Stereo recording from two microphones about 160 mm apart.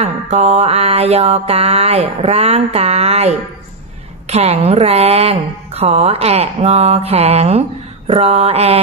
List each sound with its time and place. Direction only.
0.0 s mantra: 40° right (ahead or behind)